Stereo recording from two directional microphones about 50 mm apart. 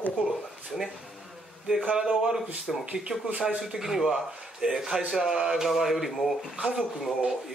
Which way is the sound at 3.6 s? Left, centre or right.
Centre.